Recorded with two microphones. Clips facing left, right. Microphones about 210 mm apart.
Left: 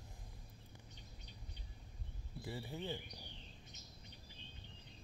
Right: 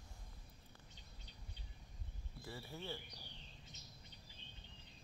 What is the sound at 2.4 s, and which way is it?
Speech, 15° left (ahead or behind).